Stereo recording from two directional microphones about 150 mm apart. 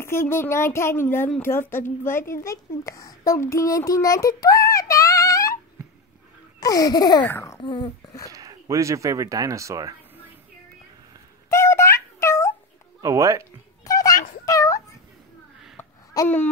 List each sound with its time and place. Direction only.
0.0 s a child's voice: 15° left (ahead or behind)
6.6 s speech: 25° left (ahead or behind)
7.2 s speech: 15° left (ahead or behind)
7.6 s speech: 35° left (ahead or behind)
8.3 s speech: 20° right (ahead or behind)
11.5 s a sound: 15° left (ahead or behind)
13.0 s speech: 20° right (ahead or behind)
13.8 s a sound: 25° left (ahead or behind)
15.8 s a sound: 20° left (ahead or behind)